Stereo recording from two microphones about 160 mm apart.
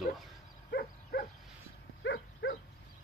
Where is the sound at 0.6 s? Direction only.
75° left (ahead or behind).